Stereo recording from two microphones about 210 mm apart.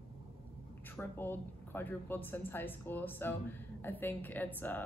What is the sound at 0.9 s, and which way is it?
A woman's voice, 10° left (ahead or behind).